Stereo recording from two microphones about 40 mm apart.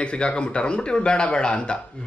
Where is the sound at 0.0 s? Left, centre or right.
Left.